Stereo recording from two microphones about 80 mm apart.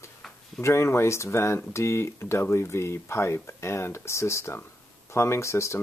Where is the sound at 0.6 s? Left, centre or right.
Left.